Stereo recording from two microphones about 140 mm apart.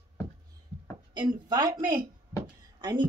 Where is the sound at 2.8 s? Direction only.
30° right (ahead or behind).